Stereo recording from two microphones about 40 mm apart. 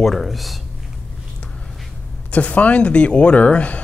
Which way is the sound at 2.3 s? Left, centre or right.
Left.